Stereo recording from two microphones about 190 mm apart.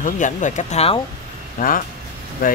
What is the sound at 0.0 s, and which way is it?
Speech, 40° left (ahead or behind).